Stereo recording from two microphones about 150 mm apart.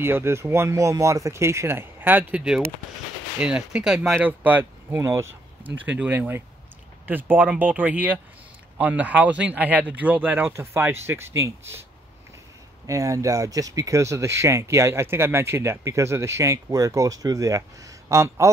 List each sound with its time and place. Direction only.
0.0 s speech: 15° right (ahead or behind)
12.8 s speech: 20° right (ahead or behind)